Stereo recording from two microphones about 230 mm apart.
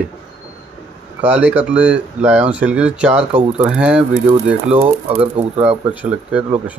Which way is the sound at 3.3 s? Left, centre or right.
Right.